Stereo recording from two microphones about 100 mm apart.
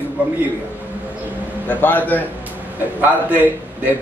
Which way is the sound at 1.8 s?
20° left (ahead or behind).